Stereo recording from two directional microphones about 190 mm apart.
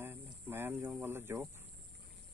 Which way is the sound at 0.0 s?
10° right (ahead or behind).